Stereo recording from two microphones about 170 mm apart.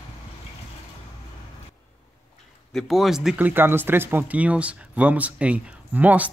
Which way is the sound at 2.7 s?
Centre (ahead or behind).